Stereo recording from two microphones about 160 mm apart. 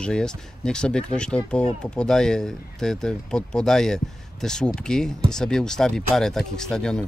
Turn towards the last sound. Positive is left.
turn(degrees=5)  # may be behind; listen again after turning